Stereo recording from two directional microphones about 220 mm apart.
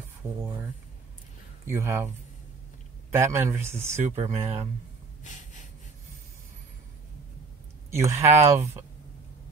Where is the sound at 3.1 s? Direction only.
10° right (ahead or behind).